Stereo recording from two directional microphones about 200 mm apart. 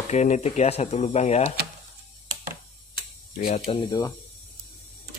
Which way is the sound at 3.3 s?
35° left (ahead or behind).